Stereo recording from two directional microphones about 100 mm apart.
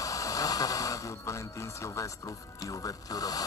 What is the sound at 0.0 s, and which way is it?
Speech, 35° left (ahead or behind).